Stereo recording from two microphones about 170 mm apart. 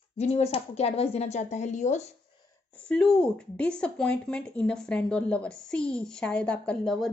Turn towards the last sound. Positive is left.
turn(degrees=0)  # may be behind; listen again after turning